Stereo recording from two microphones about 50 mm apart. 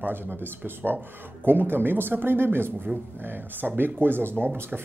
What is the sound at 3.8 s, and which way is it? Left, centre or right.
Speech, right.